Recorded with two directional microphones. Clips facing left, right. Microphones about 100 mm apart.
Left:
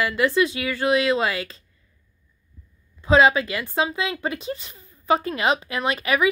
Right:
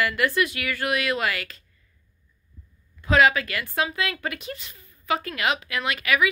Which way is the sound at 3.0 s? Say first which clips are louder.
Left 3 dB; 25° left (ahead or behind).